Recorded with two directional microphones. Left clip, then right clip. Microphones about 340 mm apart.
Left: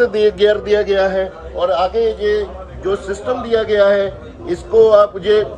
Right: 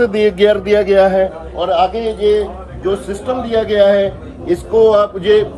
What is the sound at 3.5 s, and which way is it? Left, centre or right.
Speech, centre.